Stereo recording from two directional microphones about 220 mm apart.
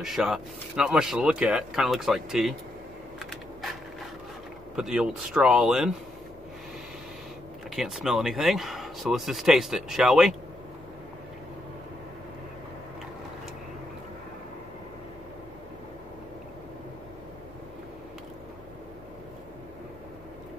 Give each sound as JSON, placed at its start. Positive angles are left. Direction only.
{"t": 0.0, "sound": "speech", "side_deg": 0}
{"t": 4.7, "sound": "speech", "side_deg": -5}
{"t": 7.7, "sound": "speech", "side_deg": 0}